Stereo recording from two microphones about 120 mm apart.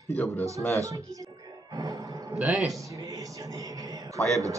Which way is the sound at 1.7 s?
35° right (ahead or behind).